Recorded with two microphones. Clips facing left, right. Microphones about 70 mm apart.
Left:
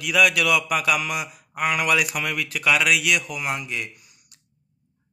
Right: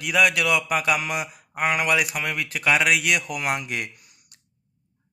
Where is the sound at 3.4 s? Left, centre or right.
Right.